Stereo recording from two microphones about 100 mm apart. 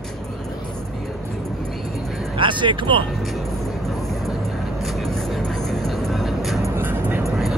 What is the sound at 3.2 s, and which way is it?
Music, centre (ahead or behind).